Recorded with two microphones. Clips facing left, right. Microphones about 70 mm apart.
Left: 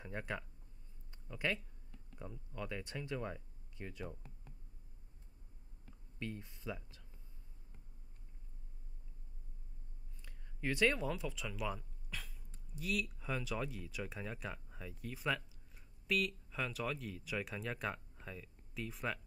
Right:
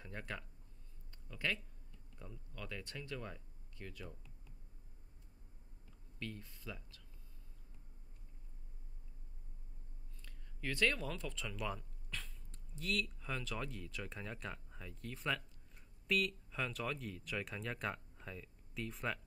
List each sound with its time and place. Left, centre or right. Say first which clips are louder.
0.0 s speech: left 4 dB; centre
6.1 s speech: left 2 dB; centre
10.2 s speech: left 4 dB; centre